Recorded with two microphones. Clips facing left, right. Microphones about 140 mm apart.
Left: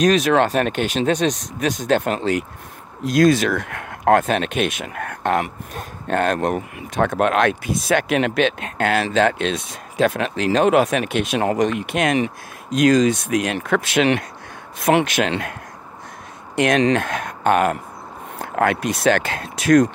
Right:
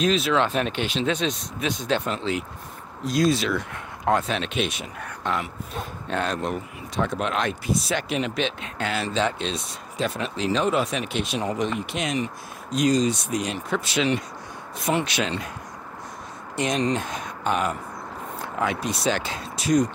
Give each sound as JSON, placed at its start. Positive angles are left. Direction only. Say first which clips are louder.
{"t": 0.0, "sound": "speech", "louder": "left 6 dB", "side_deg": 70}
{"t": 12.7, "sound": "speech", "louder": "left 6 dB", "side_deg": 90}
{"t": 13.3, "sound": "speech", "louder": "left 6 dB", "side_deg": 70}
{"t": 14.8, "sound": "speech", "louder": "left 8 dB", "side_deg": 90}
{"t": 15.0, "sound": "speech", "louder": "left 6 dB", "side_deg": 60}
{"t": 16.5, "sound": "speech", "louder": "left 7 dB", "side_deg": 65}